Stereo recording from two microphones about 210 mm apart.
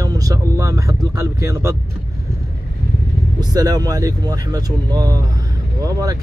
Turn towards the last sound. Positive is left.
turn(degrees=-15)  # may be behind; listen again after turning